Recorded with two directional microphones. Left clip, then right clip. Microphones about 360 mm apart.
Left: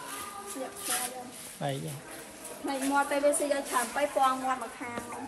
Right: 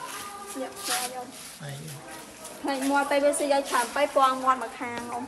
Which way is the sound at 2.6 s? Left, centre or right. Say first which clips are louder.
Right 4 dB; centre.